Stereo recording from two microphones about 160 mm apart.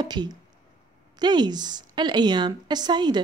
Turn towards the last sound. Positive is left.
turn(degrees=-25)  # may be behind; listen again after turning